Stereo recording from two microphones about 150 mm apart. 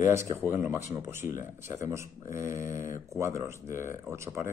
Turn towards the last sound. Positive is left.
turn(degrees=-20)  # may be behind; listen again after turning